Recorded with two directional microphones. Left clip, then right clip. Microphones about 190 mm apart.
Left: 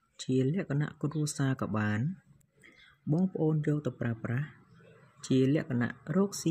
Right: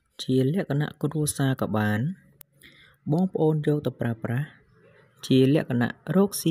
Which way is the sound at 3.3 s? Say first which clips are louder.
Right 10 dB; 35° right (ahead or behind).